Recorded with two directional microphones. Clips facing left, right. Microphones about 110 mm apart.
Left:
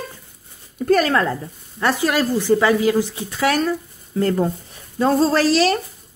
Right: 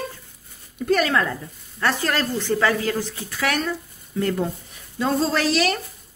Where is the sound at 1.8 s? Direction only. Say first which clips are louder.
Left 4 dB; 15° left (ahead or behind).